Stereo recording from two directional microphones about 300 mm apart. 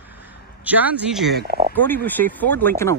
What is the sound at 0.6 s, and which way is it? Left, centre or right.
Speech, centre.